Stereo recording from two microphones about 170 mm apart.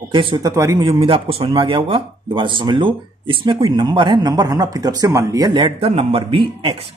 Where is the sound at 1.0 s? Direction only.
35° right (ahead or behind).